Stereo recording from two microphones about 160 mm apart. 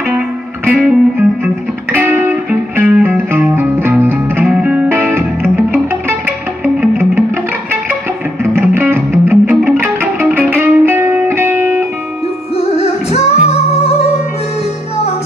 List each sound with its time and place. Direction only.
0.7 s music: 5° right (ahead or behind)
8.5 s music: 15° right (ahead or behind)
12.5 s music: 40° left (ahead or behind)